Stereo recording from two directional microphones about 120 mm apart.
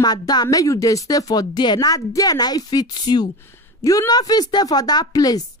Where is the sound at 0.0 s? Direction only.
35° left (ahead or behind).